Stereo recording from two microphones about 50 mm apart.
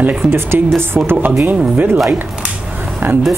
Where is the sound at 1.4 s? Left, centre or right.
Right.